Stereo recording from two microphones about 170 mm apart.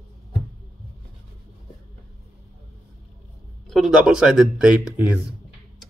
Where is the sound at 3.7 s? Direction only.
Centre (ahead or behind).